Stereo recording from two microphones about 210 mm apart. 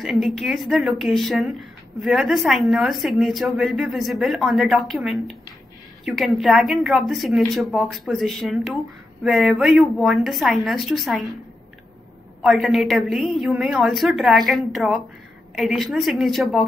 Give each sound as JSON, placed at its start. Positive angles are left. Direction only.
{"t": 0.0, "sound": "speech", "side_deg": 0}
{"t": 12.4, "sound": "speech", "side_deg": 0}